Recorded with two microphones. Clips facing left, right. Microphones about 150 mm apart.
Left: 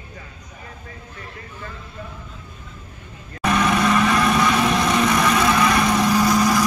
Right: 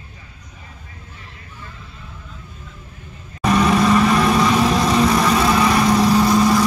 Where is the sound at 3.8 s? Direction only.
5° right (ahead or behind).